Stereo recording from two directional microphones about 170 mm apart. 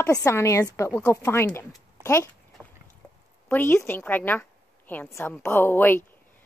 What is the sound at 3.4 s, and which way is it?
A woman's voice, 10° left (ahead or behind).